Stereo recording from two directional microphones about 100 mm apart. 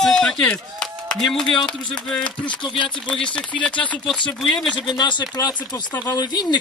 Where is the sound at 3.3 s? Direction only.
15° left (ahead or behind).